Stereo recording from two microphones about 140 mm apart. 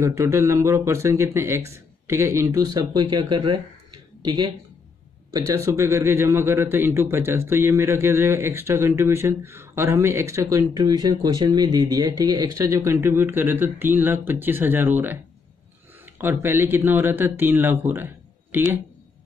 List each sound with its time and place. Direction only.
0.0 s speech: 20° right (ahead or behind)
5.5 s speech: 20° right (ahead or behind)
16.2 s speech: 15° right (ahead or behind)